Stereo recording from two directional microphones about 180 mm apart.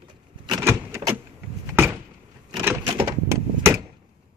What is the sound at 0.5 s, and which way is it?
Vehicle, 15° right (ahead or behind).